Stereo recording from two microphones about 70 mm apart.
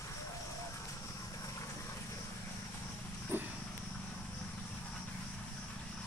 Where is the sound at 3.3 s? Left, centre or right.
Right.